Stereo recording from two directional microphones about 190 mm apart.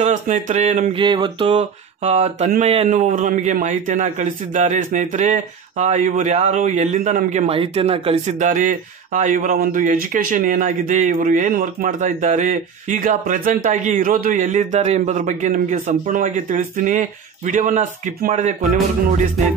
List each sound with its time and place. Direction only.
0.0 s a man's voice: 40° right (ahead or behind)
1.0 s mantra: 25° right (ahead or behind)
1.6 s a sound: 30° right (ahead or behind)
2.5 s a man's voice: 35° right (ahead or behind)